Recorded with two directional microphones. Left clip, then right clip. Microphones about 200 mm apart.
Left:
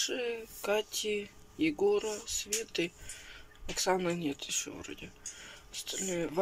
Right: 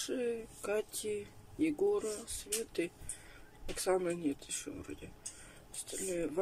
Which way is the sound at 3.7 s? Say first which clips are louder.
Left 3 dB; 10° right (ahead or behind).